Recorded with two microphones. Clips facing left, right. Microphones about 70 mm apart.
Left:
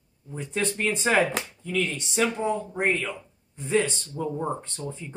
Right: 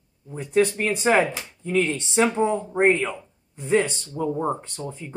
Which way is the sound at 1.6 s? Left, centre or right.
Right.